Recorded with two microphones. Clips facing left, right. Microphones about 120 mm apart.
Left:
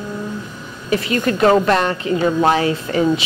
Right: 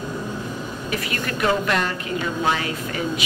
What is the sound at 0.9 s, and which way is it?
A woman's voice, 30° left (ahead or behind).